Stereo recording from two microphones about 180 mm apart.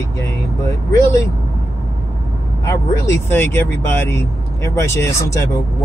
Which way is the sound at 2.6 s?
15° left (ahead or behind).